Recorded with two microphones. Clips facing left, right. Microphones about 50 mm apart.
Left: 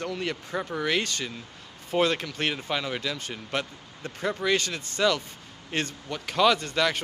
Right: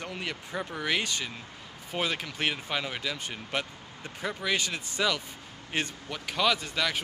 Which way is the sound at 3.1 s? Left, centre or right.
Centre.